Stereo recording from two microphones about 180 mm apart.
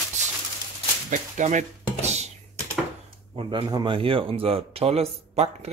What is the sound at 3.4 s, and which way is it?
Speech, 25° right (ahead or behind).